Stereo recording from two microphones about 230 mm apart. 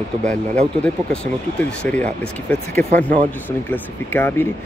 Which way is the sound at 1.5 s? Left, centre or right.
Centre.